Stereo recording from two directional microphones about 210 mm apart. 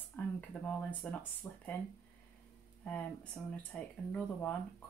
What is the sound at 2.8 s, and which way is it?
Speech, 5° left (ahead or behind).